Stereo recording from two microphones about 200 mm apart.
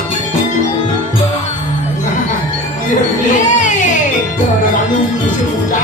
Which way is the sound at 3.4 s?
40° left (ahead or behind).